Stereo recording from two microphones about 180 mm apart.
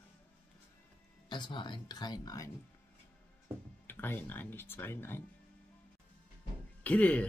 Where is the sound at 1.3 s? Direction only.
25° left (ahead or behind).